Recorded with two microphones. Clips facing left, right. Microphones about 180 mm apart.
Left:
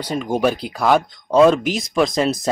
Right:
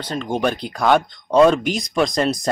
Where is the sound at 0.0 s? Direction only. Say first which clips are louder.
Left 2 dB; 10° left (ahead or behind).